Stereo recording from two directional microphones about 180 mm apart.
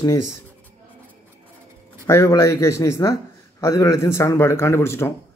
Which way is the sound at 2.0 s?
15° left (ahead or behind).